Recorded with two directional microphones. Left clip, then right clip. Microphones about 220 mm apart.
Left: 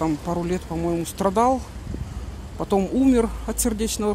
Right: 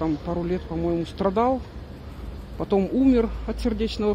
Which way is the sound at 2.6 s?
15° left (ahead or behind).